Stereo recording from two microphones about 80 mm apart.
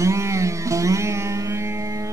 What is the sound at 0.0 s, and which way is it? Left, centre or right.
Music, right.